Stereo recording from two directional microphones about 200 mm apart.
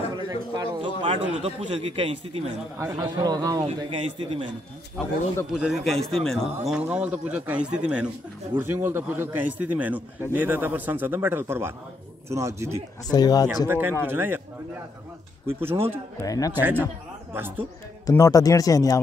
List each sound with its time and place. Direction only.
0.1 s a man's voice: 20° right (ahead or behind)
2.8 s speech: 15° right (ahead or behind)
5.5 s a man's voice: centre (ahead or behind)
13.1 s speech: 20° left (ahead or behind)
13.7 s speech: 10° right (ahead or behind)
15.4 s speech: 10° right (ahead or behind)
16.2 s speech: 15° left (ahead or behind)
16.5 s speech: 10° right (ahead or behind)
18.0 s speech: 15° left (ahead or behind)